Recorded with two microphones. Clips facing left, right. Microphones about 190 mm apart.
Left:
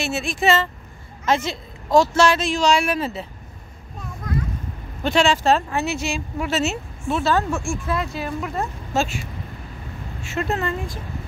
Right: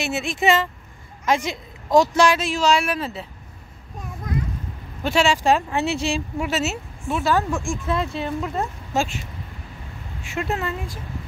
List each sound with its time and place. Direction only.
0.0 s a woman's voice: 20° right (ahead or behind); by 3.3 s centre (ahead or behind)
5.0 s a woman's voice: 10° right (ahead or behind)
5.7 s speech: 25° right (ahead or behind)
6.4 s a woman's voice: 5° right (ahead or behind)
7.9 s a woman's voice: 25° right (ahead or behind)
10.2 s a woman's voice: 10° right (ahead or behind)